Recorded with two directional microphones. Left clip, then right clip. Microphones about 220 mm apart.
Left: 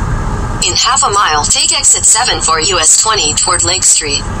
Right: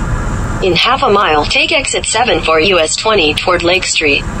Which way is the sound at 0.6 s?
15° right (ahead or behind).